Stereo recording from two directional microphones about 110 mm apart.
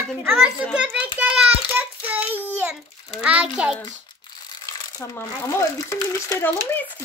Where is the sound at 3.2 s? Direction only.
10° right (ahead or behind).